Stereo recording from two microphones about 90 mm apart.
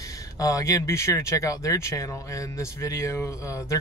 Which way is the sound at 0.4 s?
40° left (ahead or behind).